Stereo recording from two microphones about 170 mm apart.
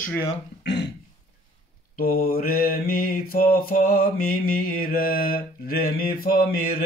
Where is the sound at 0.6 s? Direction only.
85° left.